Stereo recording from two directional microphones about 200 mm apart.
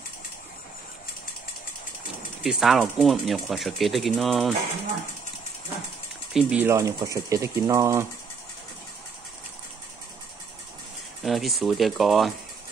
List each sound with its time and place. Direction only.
2.4 s speech: centre (ahead or behind)
6.3 s speech: 10° right (ahead or behind)
11.2 s speech: centre (ahead or behind)